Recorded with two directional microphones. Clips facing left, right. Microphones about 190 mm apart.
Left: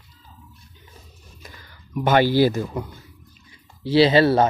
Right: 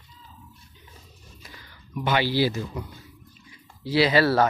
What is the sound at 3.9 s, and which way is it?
Speech, 30° left (ahead or behind).